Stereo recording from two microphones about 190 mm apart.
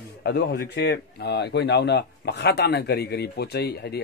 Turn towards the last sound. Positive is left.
turn(degrees=55)  # may be behind; listen again after turning